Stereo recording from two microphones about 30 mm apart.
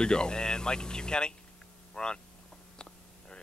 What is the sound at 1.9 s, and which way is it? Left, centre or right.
Vehicle, left.